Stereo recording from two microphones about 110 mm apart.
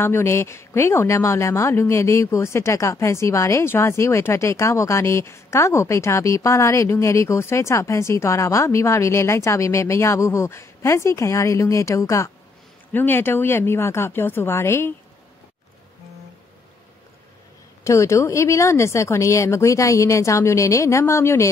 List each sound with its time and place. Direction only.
0.0 s speech: 25° left (ahead or behind)
17.8 s speech: 25° left (ahead or behind)